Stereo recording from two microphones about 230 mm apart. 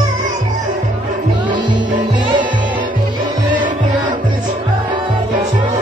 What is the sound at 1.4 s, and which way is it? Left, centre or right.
Music, centre.